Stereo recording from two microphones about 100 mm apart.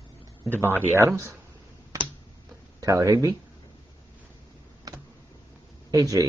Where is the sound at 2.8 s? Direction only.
35° right (ahead or behind).